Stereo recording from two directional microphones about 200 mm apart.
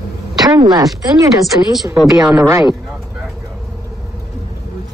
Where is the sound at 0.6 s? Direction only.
20° right (ahead or behind).